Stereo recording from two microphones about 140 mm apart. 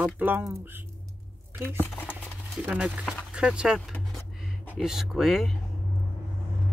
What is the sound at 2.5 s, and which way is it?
Speech, 5° right (ahead or behind).